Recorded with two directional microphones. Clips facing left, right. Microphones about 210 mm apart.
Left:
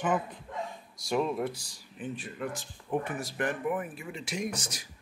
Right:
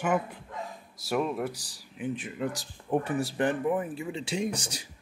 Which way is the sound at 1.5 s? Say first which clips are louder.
Even; 35° right (ahead or behind).